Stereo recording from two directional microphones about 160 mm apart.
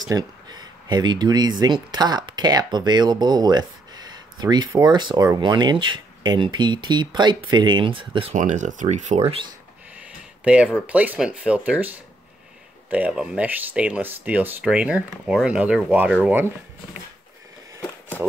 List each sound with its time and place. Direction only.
0.1 s speech: 25° right (ahead or behind)
8.4 s speech: 50° right (ahead or behind)
9.9 s a sound: 10° right (ahead or behind)
10.9 s speech: 10° right (ahead or behind)